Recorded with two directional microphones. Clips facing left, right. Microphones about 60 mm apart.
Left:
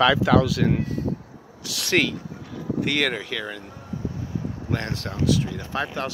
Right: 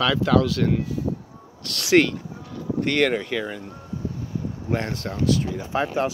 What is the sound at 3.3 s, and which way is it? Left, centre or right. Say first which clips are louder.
Speech: right 3 dB; centre.